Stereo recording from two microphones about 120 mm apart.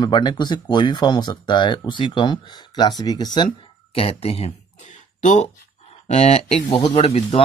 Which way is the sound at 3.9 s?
55° left (ahead or behind).